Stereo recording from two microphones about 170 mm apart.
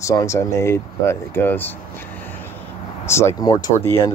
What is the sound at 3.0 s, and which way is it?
Speech, 15° left (ahead or behind).